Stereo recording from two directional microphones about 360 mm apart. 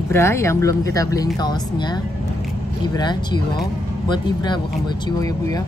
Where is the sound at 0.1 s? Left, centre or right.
Centre.